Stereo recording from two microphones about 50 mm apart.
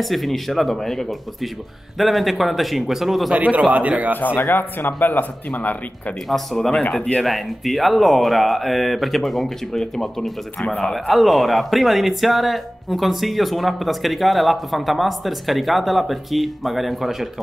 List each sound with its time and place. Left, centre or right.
0.0 s speech: centre
3.3 s a man's voice: right
4.4 s speech: left
6.2 s speech: centre
7.0 s speech: left
7.2 s speech: centre